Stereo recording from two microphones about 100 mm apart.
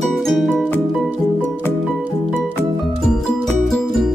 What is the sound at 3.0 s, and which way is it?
Music, 5° left (ahead or behind).